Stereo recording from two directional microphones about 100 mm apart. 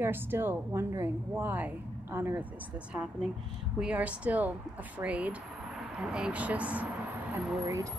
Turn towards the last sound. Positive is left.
turn(degrees=-30)  # may be behind; listen again after turning